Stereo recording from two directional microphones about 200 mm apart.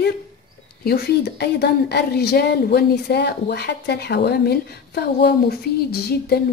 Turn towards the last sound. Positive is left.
turn(degrees=50)  # may be behind; listen again after turning